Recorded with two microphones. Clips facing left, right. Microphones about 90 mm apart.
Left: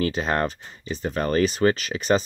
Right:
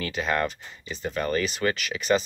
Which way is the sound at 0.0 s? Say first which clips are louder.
Left 3 dB; 35° left (ahead or behind).